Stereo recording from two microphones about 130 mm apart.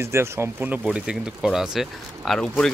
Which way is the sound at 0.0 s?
20° right (ahead or behind).